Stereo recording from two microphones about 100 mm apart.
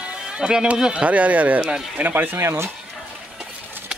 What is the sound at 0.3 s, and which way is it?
Speech, 5° right (ahead or behind).